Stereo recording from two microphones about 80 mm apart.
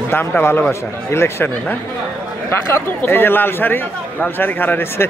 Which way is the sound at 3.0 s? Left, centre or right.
Left.